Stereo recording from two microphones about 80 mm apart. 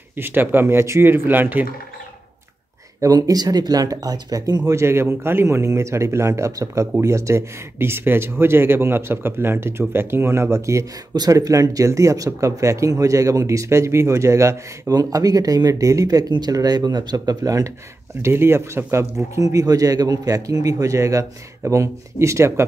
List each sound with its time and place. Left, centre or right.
0.1 s speech: right
3.0 s speech: right
4.7 s speech: right
11.1 s speech: right
15.0 s speech: right
16.3 s speech: right
18.2 s speech: right